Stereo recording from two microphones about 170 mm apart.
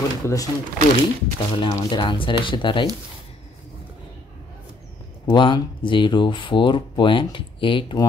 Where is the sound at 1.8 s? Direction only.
30° left (ahead or behind).